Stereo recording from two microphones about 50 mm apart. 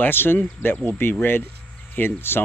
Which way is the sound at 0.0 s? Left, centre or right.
Left.